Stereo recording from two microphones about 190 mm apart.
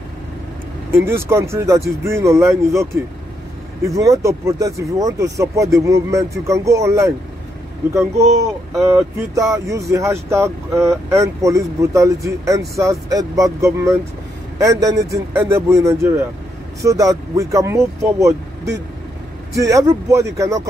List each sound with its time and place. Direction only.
0.9 s speech: 15° right (ahead or behind)
8.8 s speech: 15° right (ahead or behind)
19.5 s speech: 15° right (ahead or behind)